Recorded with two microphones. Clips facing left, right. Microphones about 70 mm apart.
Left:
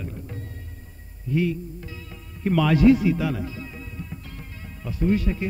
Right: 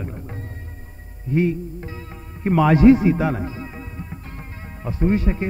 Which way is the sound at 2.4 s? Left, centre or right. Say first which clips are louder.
Right 4 dB; right.